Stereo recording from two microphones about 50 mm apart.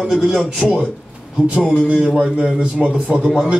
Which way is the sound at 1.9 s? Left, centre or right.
Right.